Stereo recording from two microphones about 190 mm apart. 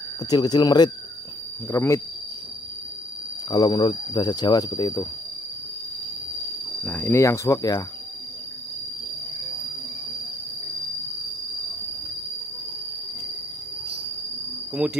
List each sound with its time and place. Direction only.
0.3 s speech: 20° left (ahead or behind)
3.4 s speech: 20° left (ahead or behind)
6.8 s speech: 10° left (ahead or behind)